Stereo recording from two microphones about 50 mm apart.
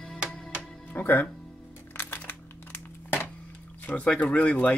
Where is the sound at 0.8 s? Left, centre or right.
Left.